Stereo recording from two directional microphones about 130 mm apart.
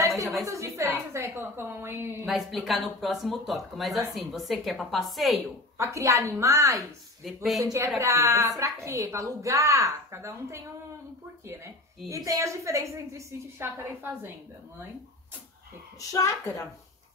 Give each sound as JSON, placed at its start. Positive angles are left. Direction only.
{"t": 0.5, "sound": "a sound", "side_deg": -25}
{"t": 2.2, "sound": "speech", "side_deg": 0}
{"t": 5.8, "sound": "a woman's voice", "side_deg": -25}
{"t": 7.2, "sound": "speech", "side_deg": 0}
{"t": 7.6, "sound": "a woman's voice", "side_deg": -25}
{"t": 16.1, "sound": "a woman's voice", "side_deg": 25}